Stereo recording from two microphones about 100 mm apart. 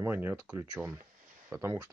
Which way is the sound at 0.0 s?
20° right (ahead or behind).